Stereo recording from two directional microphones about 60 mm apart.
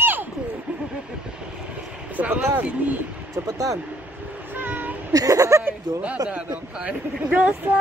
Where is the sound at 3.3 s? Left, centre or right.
Right.